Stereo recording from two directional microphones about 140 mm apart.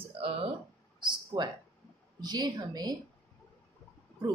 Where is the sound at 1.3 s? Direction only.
30° right (ahead or behind).